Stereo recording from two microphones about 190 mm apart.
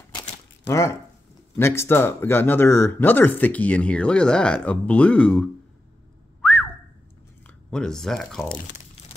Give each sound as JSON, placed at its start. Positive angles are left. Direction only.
{"t": 0.1, "sound": "a sound", "side_deg": 20}
{"t": 1.6, "sound": "speech", "side_deg": 15}
{"t": 6.4, "sound": "whistling", "side_deg": 5}
{"t": 7.4, "sound": "speech", "side_deg": 5}